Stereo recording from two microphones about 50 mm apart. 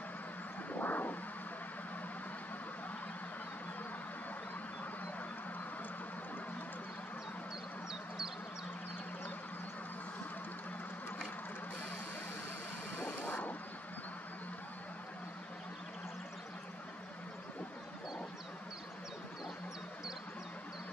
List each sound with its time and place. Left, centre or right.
0.7 s vehicle: left
12.9 s vehicle: left
13.3 s vehicle: left